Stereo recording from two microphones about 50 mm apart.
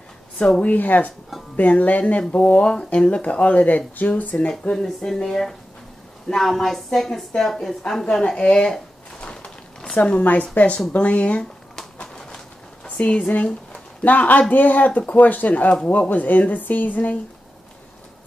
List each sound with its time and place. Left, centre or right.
0.6 s speech: left
2.6 s speech: centre; by 4.5 s left
4.5 s a woman's voice: centre
9.2 s a sound: left
10.2 s speech: left
11.7 s a sound: centre
14.0 s speech: left